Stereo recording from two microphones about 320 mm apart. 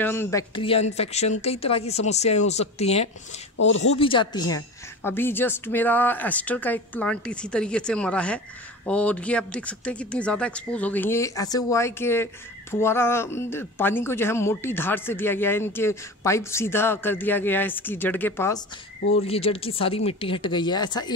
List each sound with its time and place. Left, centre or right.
0.0 s speech: centre
3.5 s speech: left
4.0 s a woman's voice: centre
19.2 s a woman's voice: centre